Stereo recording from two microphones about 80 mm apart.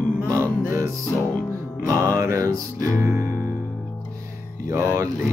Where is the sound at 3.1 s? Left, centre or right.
Left.